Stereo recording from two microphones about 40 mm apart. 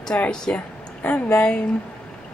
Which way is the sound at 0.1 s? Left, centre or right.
Left.